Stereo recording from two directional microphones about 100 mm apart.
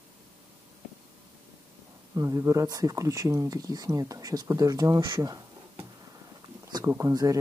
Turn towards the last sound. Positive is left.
turn(degrees=-40)  # may be behind; listen again after turning